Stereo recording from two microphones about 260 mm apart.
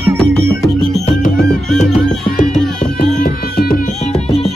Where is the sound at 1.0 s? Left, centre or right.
Left.